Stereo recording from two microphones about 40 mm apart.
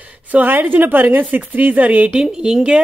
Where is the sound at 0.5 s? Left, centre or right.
Right.